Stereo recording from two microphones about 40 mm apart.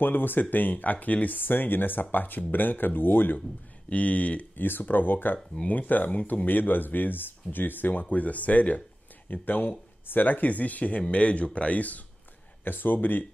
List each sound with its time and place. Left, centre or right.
0.0 s speech: left
3.9 s speech: left
4.6 s speech: left
12.6 s speech: left